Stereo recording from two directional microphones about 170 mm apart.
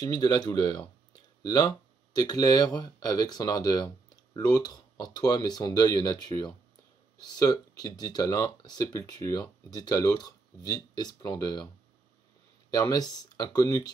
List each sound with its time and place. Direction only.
0.0 s speech: 25° left (ahead or behind)
12.7 s speech: 20° left (ahead or behind)